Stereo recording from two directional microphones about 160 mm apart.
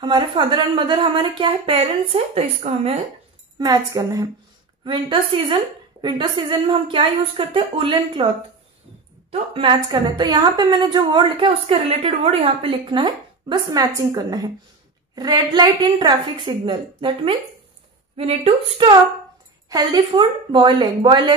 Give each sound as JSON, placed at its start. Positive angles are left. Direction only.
{"t": 0.0, "sound": "a woman's voice", "side_deg": -30}
{"t": 3.5, "sound": "a woman's voice", "side_deg": -25}
{"t": 4.8, "sound": "a woman's voice", "side_deg": -30}
{"t": 9.3, "sound": "a woman's voice", "side_deg": -35}